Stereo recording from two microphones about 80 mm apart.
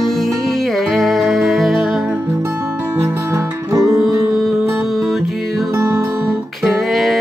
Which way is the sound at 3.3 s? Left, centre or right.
Right.